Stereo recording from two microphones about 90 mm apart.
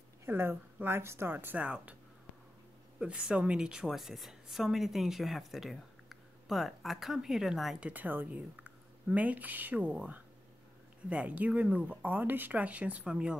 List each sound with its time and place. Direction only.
0.2 s speech: 25° right (ahead or behind)
3.0 s a woman's voice: 10° right (ahead or behind)
7.8 s speech: 20° right (ahead or behind)